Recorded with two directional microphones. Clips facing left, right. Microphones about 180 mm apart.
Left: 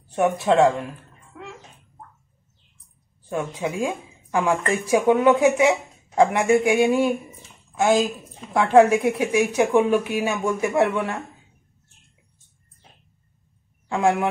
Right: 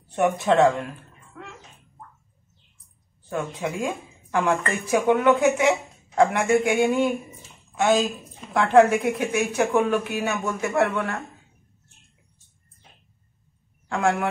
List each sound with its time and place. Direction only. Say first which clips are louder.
0.1 s speech: left 1 dB; 5° left (ahead or behind)
3.3 s speech: left 2 dB; 10° left (ahead or behind)
13.8 s speech: left 3 dB; 15° left (ahead or behind)